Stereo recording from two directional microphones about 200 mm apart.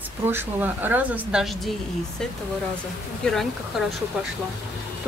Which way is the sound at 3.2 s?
Centre (ahead or behind).